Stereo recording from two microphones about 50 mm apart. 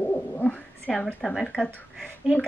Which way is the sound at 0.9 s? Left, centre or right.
Centre.